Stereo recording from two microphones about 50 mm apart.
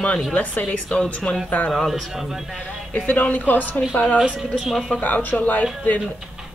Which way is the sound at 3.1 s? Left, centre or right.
Left.